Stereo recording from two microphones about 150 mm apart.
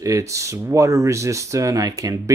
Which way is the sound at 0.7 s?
20° right (ahead or behind).